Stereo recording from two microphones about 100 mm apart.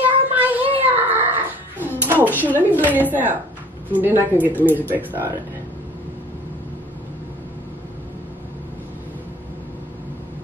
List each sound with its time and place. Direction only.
0.0 s child singing: 15° right (ahead or behind)
0.7 s cat: 20° right (ahead or behind)
2.5 s a woman's voice: 15° right (ahead or behind)